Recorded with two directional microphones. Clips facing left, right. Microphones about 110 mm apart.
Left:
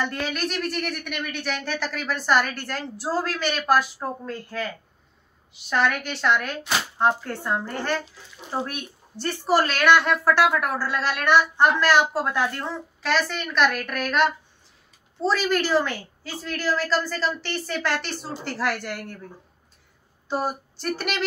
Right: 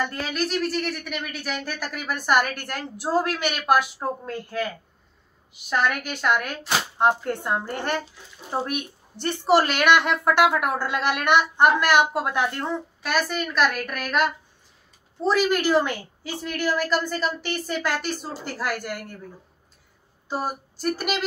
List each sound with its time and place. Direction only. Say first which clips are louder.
0.0 s a woman's voice: even; centre (ahead or behind)
5.7 s a woman's voice: left 1 dB; 10° right (ahead or behind)
15.4 s a woman's voice: even; 15° right (ahead or behind)
20.2 s a sound: left 2 dB; 5° right (ahead or behind)